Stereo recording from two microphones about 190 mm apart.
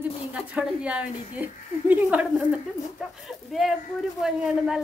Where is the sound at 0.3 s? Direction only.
5° right (ahead or behind).